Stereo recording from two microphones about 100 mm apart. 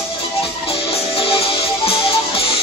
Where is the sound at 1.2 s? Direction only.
65° left (ahead or behind).